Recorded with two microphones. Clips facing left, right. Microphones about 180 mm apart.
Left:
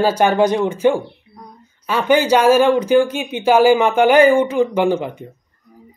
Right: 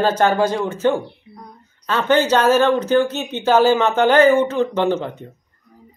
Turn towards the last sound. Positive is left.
turn(degrees=10)  # may be behind; listen again after turning